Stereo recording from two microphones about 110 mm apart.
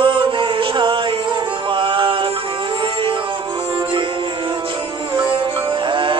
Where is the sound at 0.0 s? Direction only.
50° right (ahead or behind).